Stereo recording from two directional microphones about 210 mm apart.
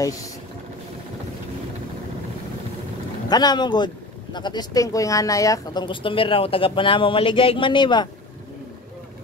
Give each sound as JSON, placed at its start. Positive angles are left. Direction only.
{"t": 3.3, "sound": "speech", "side_deg": 20}